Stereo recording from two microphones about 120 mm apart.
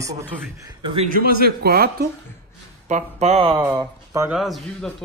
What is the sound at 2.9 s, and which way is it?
Speech, 70° right (ahead or behind).